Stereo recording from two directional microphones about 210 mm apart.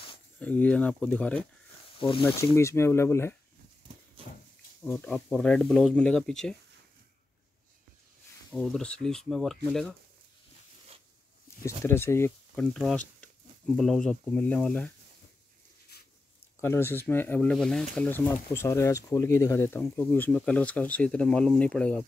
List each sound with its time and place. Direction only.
0.4 s speech: 5° left (ahead or behind)
2.0 s speech: 25° left (ahead or behind)
2.2 s speech: 10° left (ahead or behind)
4.8 s speech: 5° left (ahead or behind)
8.5 s speech: 5° left (ahead or behind)
11.5 s a sound: 15° left (ahead or behind)
11.8 s speech: 10° left (ahead or behind)
16.6 s speech: 10° left (ahead or behind)